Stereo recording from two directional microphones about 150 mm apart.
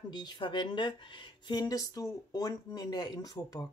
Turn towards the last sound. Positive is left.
turn(degrees=25)  # may be behind; listen again after turning